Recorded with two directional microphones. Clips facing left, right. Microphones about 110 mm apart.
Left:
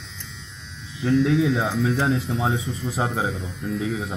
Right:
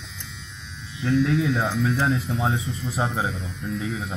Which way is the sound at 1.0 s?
30° left (ahead or behind).